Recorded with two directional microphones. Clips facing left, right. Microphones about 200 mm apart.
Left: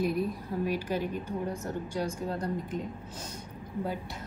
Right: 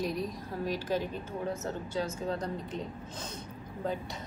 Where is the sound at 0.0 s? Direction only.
10° left (ahead or behind).